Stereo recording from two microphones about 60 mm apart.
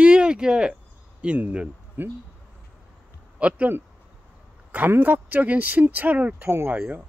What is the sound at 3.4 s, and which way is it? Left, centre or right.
Speech, right.